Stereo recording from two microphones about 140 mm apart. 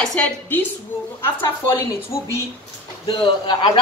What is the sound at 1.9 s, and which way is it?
Speech, 20° left (ahead or behind).